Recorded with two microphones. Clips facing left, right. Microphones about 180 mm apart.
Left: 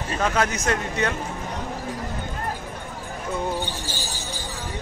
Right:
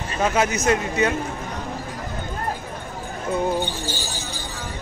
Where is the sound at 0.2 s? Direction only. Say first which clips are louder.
Right 3 dB; 5° right (ahead or behind).